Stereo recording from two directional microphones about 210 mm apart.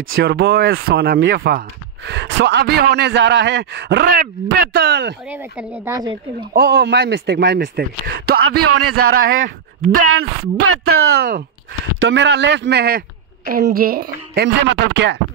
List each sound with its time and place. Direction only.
0.2 s speech: 50° right (ahead or behind)
5.3 s speech: 10° right (ahead or behind)
6.5 s speech: 50° right (ahead or behind)
8.5 s speech: 90° right
8.9 s speech: 45° right (ahead or behind)
12.0 s a man's voice: 60° right (ahead or behind)